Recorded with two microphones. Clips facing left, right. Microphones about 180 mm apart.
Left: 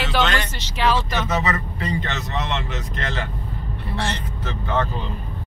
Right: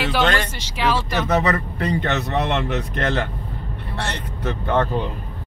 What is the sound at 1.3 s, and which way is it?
Speech, 60° right (ahead or behind).